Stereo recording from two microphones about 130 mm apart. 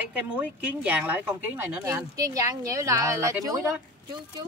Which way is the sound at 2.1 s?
25° right (ahead or behind).